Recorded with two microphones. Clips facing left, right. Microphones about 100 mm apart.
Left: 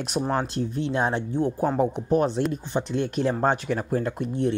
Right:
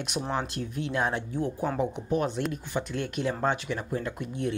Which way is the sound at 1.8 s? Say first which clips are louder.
Left 6 dB; 40° left (ahead or behind).